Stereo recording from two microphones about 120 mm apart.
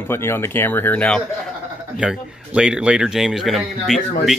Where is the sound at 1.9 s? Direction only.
5° right (ahead or behind).